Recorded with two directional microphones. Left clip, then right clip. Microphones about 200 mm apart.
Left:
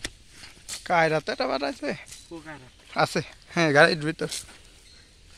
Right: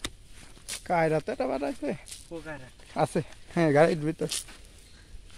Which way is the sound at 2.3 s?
30° right (ahead or behind).